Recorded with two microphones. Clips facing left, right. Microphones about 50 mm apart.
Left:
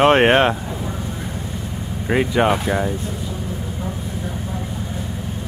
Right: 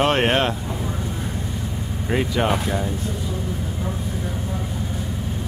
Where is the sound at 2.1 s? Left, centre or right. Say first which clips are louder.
Left 4 dB; left.